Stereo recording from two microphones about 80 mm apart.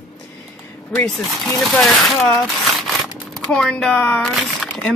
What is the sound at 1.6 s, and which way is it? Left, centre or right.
Speech, centre.